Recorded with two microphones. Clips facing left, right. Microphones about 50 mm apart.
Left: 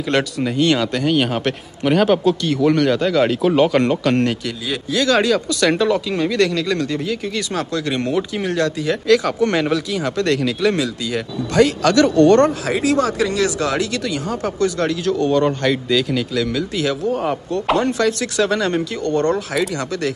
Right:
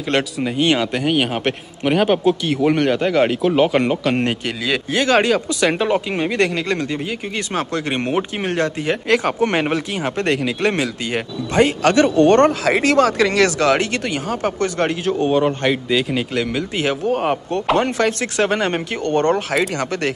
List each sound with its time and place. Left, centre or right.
0.4 s a man's voice: centre
4.5 s a man's voice: right
4.9 s speech: right
10.6 s speech: right
12.4 s speech: right
15.1 s a man's voice: right
16.3 s speech: right